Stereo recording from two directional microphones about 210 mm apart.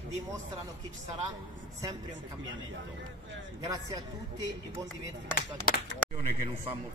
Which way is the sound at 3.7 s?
15° right (ahead or behind).